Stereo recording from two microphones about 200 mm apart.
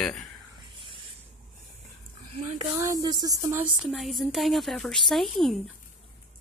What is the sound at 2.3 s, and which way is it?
Speech, 30° right (ahead or behind).